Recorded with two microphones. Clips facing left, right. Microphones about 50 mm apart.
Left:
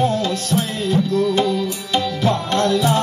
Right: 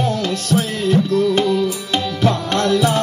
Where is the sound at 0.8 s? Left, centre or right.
Right.